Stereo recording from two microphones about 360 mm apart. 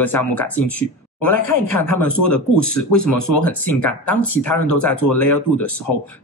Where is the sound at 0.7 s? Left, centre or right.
Left.